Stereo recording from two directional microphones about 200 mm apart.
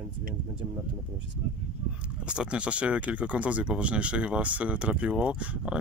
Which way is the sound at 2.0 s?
5° right (ahead or behind).